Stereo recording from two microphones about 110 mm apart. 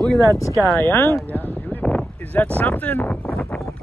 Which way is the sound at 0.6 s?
20° left (ahead or behind).